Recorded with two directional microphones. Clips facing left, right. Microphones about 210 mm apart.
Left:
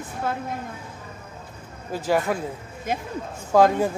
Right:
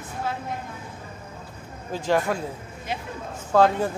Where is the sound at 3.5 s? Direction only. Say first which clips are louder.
Left 2 dB; 10° left (ahead or behind).